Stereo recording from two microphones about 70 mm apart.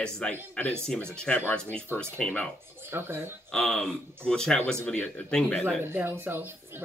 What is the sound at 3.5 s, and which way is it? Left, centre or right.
Speech, centre.